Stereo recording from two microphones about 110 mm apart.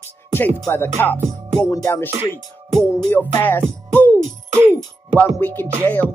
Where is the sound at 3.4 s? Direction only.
20° left (ahead or behind).